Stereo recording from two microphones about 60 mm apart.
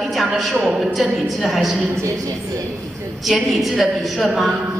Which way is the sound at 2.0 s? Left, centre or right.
Right.